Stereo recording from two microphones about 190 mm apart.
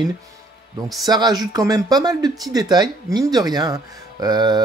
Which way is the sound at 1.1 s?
20° right (ahead or behind).